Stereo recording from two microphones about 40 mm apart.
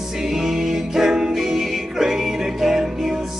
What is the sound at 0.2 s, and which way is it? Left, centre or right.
Music, centre.